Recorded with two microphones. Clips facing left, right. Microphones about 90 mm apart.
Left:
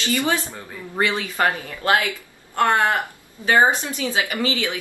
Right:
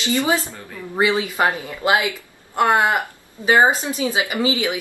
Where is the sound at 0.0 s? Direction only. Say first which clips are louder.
Right 2 dB; 20° right (ahead or behind).